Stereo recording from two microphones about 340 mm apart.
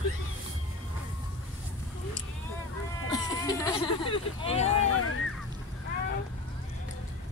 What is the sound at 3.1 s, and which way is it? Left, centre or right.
Hubbub, centre.